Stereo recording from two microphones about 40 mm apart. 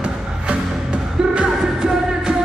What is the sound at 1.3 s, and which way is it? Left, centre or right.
Music, right.